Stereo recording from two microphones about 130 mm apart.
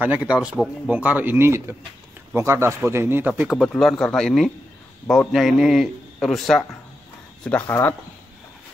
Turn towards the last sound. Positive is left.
turn(degrees=20)  # may be behind; listen again after turning